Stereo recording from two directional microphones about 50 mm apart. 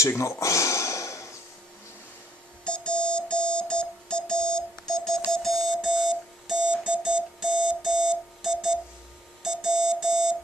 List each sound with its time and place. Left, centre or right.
0.2 s a sound: left
2.6 s music: centre
5.8 s alarm clock: centre